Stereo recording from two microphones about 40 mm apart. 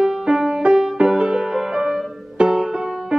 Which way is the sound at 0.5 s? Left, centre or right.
Centre.